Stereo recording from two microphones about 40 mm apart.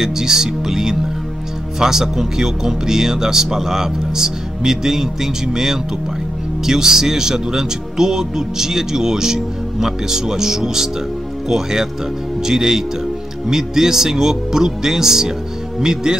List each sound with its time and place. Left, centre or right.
0.0 s a man's voice: centre